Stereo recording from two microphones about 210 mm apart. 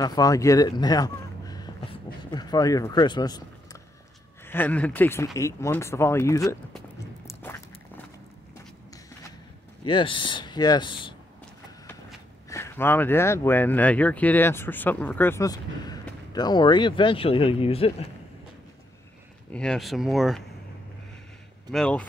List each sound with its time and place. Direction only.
0.0 s speech: 20° left (ahead or behind)
4.5 s speech: 10° left (ahead or behind)
7.2 s walk: 15° left (ahead or behind)
9.8 s speech: 25° left (ahead or behind)
12.4 s speech: 15° left (ahead or behind)
19.5 s speech: 5° left (ahead or behind)
21.7 s speech: 5° left (ahead or behind)